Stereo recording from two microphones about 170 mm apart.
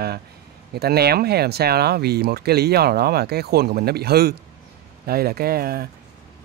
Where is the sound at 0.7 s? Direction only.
70° right (ahead or behind).